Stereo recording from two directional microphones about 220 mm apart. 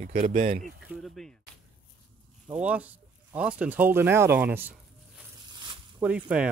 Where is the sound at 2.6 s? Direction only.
5° right (ahead or behind).